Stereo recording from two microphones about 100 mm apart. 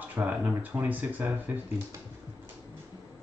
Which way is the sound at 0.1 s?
15° right (ahead or behind).